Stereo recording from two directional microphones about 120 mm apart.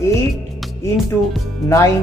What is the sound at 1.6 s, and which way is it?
Speech, 25° left (ahead or behind).